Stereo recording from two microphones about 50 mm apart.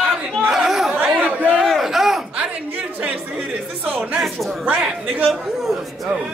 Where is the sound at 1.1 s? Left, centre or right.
Right.